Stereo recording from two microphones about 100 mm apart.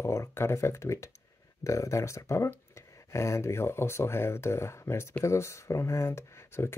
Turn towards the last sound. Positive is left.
turn(degrees=25)  # may be behind; listen again after turning